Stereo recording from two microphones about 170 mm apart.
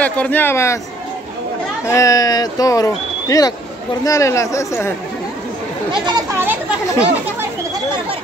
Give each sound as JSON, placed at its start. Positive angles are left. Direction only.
{"t": 0.0, "sound": "speech", "side_deg": 10}
{"t": 1.9, "sound": "speech", "side_deg": 20}
{"t": 6.0, "sound": "speech", "side_deg": -25}